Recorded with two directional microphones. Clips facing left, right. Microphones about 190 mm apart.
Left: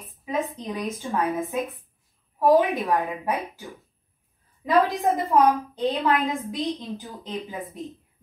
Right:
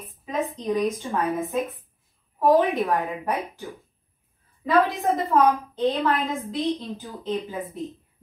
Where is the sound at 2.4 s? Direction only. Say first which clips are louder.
Even; 15° left (ahead or behind).